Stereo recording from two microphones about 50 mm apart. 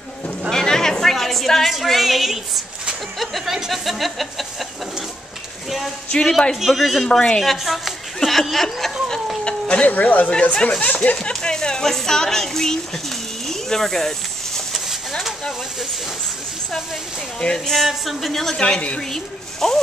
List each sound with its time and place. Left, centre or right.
0.5 s a sound: centre
3.2 s speech: centre
6.5 s speech: centre
7.1 s speech: centre
7.4 s speech: centre
9.4 s a sound: centre
9.8 s speech: left
10.4 s speech: left
11.2 s speech: centre
17.6 s speech: centre